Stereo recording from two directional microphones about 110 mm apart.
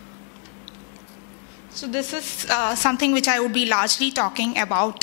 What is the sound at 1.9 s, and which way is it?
A woman's voice, 15° left (ahead or behind).